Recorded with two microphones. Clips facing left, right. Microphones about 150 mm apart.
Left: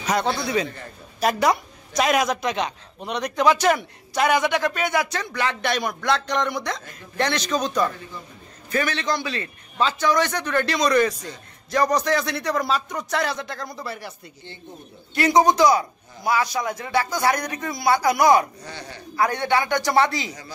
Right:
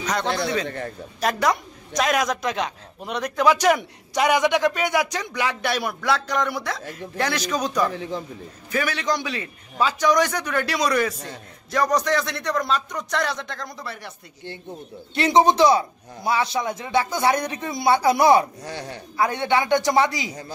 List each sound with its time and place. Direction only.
0.7 s speech: 70° right (ahead or behind)
1.2 s a woman's voice: 5° left (ahead or behind); by 7.8 s 10° right (ahead or behind)
7.9 s speech: 90° right
8.7 s a man's voice: 10° right (ahead or behind)
15.1 s a man's voice: 25° right (ahead or behind)
18.6 s speech: 75° right (ahead or behind)
19.1 s a man's voice: 20° right (ahead or behind)